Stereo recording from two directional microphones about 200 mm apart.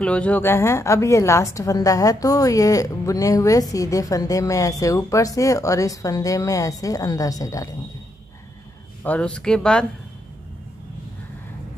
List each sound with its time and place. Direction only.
0.0 s a woman's voice: 5° left (ahead or behind)
9.0 s speech: 5° left (ahead or behind)